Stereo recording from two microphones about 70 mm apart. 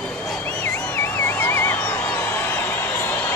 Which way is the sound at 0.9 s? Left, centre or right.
Left.